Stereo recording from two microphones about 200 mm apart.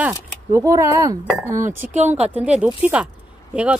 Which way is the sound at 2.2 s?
5° right (ahead or behind).